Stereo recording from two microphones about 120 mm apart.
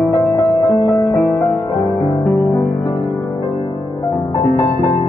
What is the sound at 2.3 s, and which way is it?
Music, 25° left (ahead or behind).